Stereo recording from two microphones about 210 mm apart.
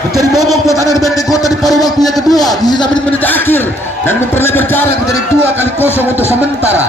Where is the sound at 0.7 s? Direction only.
15° left (ahead or behind).